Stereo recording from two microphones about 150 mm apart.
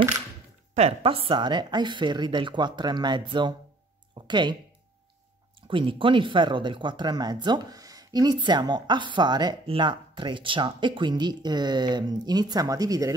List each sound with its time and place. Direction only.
0.7 s a woman's voice: 40° right (ahead or behind)
5.7 s speech: 35° right (ahead or behind)